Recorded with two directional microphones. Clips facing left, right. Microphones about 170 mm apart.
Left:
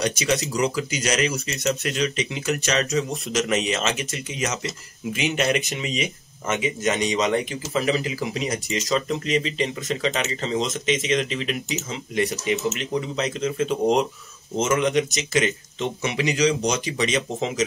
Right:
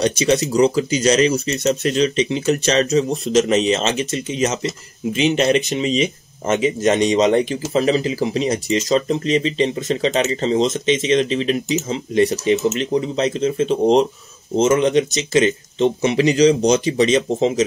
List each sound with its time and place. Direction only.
0.0 s speech: 25° right (ahead or behind)